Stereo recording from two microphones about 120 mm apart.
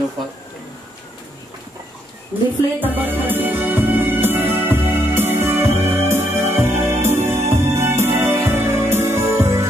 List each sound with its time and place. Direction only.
2.3 s speech: 15° right (ahead or behind)
2.8 s music: 15° right (ahead or behind)